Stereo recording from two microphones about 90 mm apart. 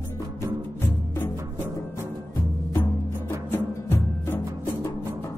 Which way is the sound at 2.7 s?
30° left (ahead or behind).